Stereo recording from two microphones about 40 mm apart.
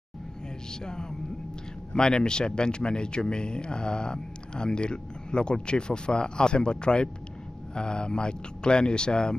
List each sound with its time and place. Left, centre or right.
2.0 s speech: centre